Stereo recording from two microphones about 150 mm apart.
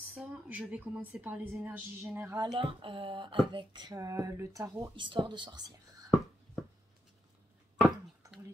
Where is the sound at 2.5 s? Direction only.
35° right (ahead or behind).